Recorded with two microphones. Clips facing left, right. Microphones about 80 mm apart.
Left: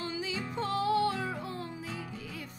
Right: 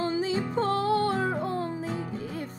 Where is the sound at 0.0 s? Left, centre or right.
Right.